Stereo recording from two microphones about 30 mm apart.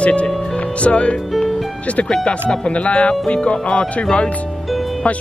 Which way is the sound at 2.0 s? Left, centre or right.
Left.